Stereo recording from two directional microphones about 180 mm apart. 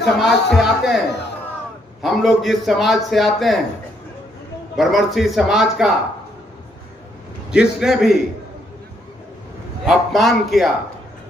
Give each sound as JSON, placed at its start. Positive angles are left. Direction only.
{"t": 0.2, "sound": "a man's voice", "side_deg": 0}
{"t": 4.7, "sound": "a man's voice", "side_deg": 0}
{"t": 7.5, "sound": "a man's voice", "side_deg": -5}
{"t": 9.8, "sound": "a man's voice", "side_deg": 0}